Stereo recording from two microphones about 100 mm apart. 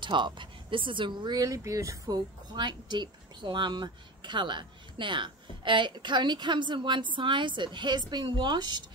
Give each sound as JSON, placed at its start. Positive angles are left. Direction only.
{"t": 0.0, "sound": "speech", "side_deg": -50}
{"t": 1.4, "sound": "speech", "side_deg": -35}
{"t": 2.1, "sound": "a woman's voice", "side_deg": -50}